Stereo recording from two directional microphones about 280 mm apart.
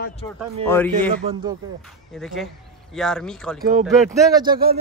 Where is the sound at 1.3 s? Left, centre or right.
Centre.